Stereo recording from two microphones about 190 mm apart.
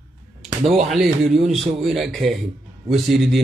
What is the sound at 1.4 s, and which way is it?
A man's voice, centre (ahead or behind).